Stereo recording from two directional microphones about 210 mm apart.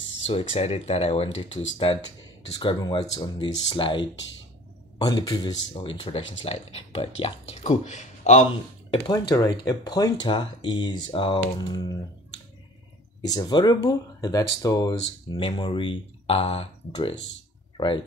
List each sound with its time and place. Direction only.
0.3 s speech: 25° left (ahead or behind)
8.9 s speech: 25° left (ahead or behind)
13.3 s speech: 20° left (ahead or behind)